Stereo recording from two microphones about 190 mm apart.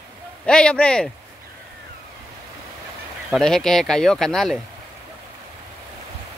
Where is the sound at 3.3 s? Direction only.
Centre (ahead or behind).